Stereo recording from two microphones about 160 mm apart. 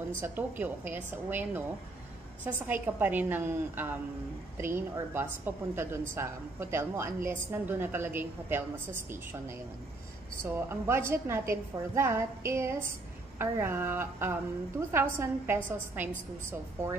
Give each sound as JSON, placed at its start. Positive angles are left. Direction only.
{"t": 0.2, "sound": "a woman's voice", "side_deg": -10}